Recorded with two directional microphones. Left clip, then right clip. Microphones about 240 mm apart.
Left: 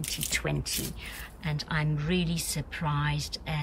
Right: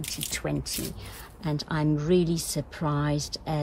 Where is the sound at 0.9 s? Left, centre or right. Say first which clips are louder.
Left 3 dB; centre.